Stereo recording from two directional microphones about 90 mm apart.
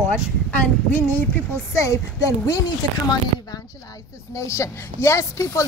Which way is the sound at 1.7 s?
35° left (ahead or behind).